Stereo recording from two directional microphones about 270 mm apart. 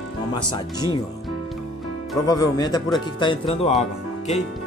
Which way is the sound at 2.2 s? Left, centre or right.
Centre.